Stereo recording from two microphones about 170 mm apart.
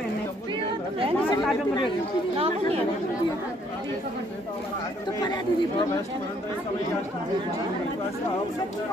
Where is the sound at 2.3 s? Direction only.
35° right (ahead or behind).